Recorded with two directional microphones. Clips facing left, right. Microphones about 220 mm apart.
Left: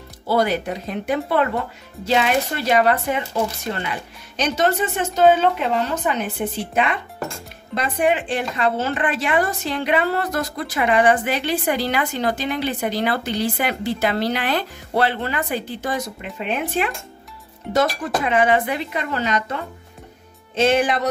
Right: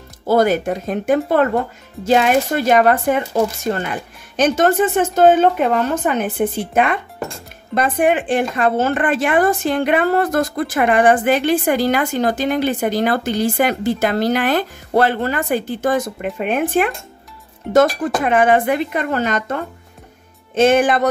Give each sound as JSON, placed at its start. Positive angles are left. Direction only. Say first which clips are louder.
{"t": 0.3, "sound": "a woman's voice", "louder": "right 5 dB", "side_deg": -45}